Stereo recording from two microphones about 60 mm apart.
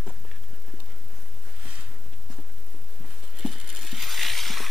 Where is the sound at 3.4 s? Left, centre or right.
Centre.